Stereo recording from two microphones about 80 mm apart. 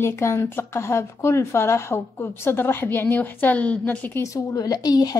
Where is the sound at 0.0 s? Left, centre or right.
Left.